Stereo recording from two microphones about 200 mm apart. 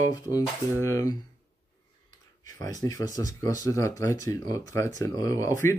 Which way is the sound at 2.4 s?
20° left (ahead or behind).